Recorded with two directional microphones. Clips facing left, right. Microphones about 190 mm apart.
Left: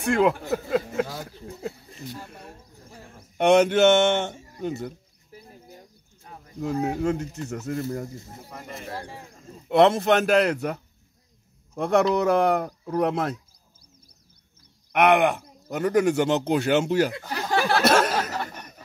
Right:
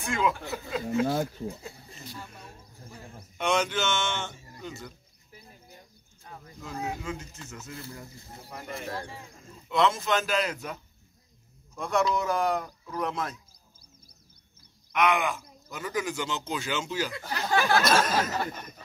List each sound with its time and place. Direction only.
0.0 s speech: 65° left (ahead or behind)
3.3 s speech: 60° left (ahead or behind)
6.6 s speech: 55° left (ahead or behind)
7.8 s speech: 45° left (ahead or behind)
9.7 s speech: 60° left (ahead or behind)
14.9 s speech: 60° left (ahead or behind)
17.6 s a sound: 35° left (ahead or behind)
17.8 s speech: 65° left (ahead or behind)